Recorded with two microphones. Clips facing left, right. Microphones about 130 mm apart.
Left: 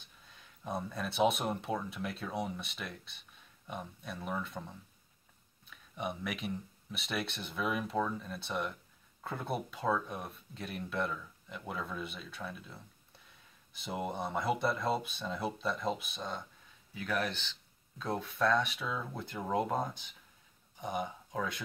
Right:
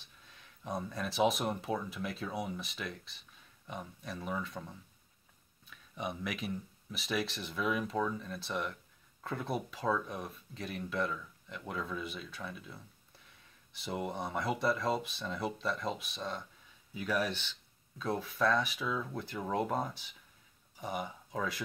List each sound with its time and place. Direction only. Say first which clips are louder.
0.4 s speech: even; centre (ahead or behind)
5.9 s speech: even; centre (ahead or behind)
13.7 s speech: even; centre (ahead or behind)
16.9 s speech: right 1 dB; 10° right (ahead or behind)
18.0 s speech: even; centre (ahead or behind)